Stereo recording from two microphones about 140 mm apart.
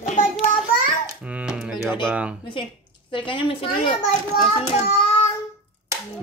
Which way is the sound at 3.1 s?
35° left (ahead or behind).